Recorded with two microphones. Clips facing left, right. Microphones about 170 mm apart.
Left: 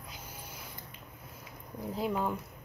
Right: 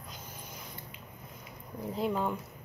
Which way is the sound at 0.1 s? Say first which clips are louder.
Right 1 dB; 10° left (ahead or behind).